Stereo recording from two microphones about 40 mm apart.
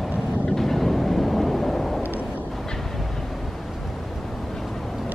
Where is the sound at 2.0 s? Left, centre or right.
Right.